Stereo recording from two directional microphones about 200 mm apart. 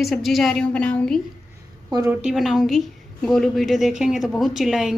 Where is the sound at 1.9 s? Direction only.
15° right (ahead or behind).